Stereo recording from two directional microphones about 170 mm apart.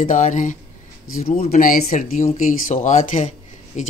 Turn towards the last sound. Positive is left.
turn(degrees=45)  # may be behind; listen again after turning